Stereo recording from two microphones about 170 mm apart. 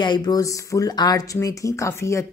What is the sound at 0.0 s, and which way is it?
A woman's voice, 25° left (ahead or behind).